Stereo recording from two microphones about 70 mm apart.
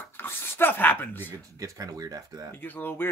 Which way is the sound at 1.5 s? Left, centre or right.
Right.